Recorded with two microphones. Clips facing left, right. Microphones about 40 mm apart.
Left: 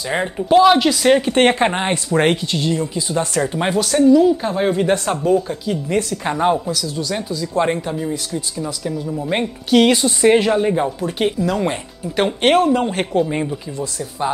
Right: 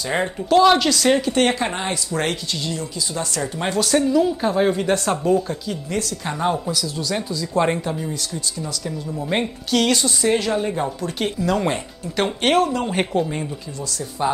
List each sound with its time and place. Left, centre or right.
0.6 s a woman's voice: centre
1.2 s speech: left
3.5 s a woman's voice: centre
3.9 s speech: centre
5.9 s speech: left
6.7 s speech: centre
9.8 s speech: centre
11.3 s speech: centre
12.4 s a woman's voice: centre
12.9 s speech: centre